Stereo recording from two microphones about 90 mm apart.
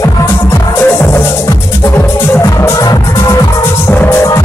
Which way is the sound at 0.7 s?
30° left (ahead or behind).